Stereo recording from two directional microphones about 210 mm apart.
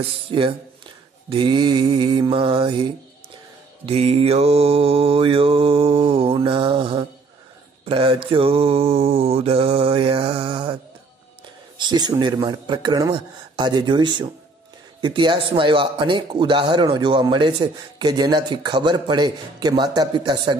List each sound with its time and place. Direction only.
0.3 s a man's voice: 25° right (ahead or behind)
7.8 s mantra: 25° right (ahead or behind)
11.8 s a man's voice: 20° right (ahead or behind)